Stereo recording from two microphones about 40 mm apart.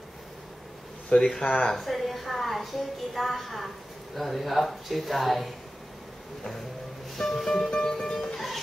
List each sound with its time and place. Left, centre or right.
1.4 s speech: left
1.7 s a woman's voice: centre
7.2 s music: centre